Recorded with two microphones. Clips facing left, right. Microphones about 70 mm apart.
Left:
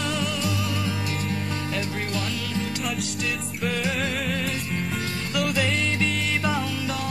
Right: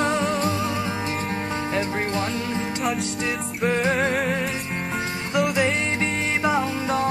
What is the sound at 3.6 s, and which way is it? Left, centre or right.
Music, right.